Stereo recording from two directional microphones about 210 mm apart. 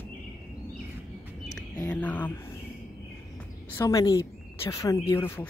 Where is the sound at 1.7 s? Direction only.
10° left (ahead or behind).